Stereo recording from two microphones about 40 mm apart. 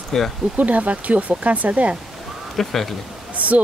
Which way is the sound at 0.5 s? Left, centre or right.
Right.